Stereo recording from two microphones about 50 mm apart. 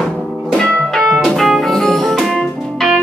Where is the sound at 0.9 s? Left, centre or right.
Centre.